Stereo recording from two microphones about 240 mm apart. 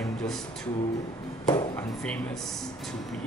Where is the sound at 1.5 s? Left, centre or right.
Centre.